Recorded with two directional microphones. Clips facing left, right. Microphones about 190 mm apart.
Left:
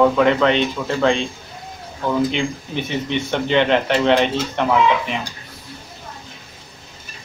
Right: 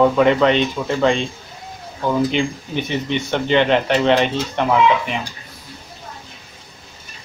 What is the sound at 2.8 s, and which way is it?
Speech, centre (ahead or behind).